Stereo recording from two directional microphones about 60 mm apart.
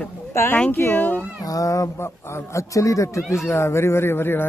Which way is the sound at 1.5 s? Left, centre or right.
Left.